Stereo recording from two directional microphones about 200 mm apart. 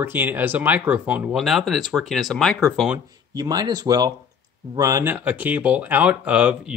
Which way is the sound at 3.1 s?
20° right (ahead or behind).